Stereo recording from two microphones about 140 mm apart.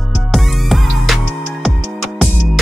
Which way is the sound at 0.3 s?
Centre (ahead or behind).